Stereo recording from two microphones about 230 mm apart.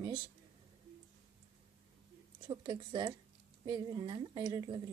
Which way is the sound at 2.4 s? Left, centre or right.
Centre.